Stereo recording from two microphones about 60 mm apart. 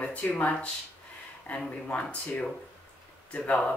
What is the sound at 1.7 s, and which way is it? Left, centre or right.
Speech, left.